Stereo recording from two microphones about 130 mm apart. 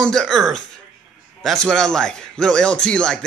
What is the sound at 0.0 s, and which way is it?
A man's voice, 5° left (ahead or behind).